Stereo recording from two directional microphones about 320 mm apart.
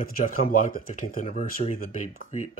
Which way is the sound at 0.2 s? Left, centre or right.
Left.